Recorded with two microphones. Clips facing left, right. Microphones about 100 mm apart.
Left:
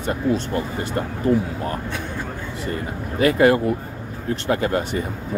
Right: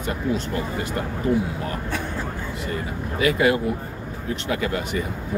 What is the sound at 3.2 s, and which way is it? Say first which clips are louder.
Speech: left 4 dB; 45° left (ahead or behind).